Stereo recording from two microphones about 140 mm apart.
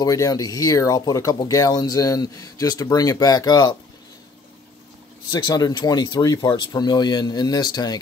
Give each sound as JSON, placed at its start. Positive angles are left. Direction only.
{"t": 0.0, "sound": "speech", "side_deg": 25}
{"t": 5.3, "sound": "speech", "side_deg": 30}